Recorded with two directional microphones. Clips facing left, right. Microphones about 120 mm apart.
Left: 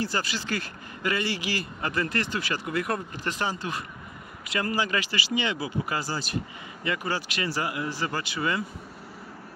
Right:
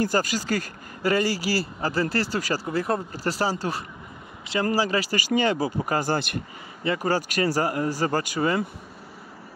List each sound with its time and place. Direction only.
0.0 s speech: 45° right (ahead or behind)
6.8 s speech: 35° right (ahead or behind)